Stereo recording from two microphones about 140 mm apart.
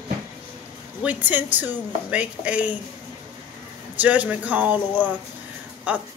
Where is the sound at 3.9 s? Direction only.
10° right (ahead or behind).